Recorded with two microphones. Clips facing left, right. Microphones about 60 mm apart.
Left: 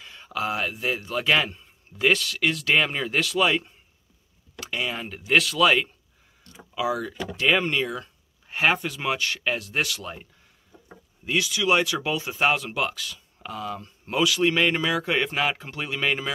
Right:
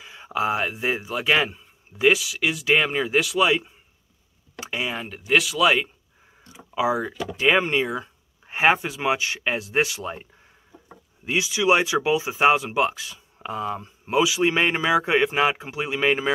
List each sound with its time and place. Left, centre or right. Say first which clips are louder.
0.0 s speech: right 4 dB; centre
1.0 s speech: even; centre
4.6 s a sound: right 1 dB; centre
5.0 s speech: even; centre
6.7 s speech: right 4 dB; right
7.2 s speech: right 2 dB; centre
7.5 s speech: right 3 dB; right
11.2 s speech: right 3 dB; centre